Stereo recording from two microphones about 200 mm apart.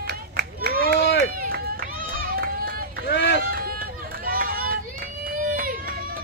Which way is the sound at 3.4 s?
45° right (ahead or behind).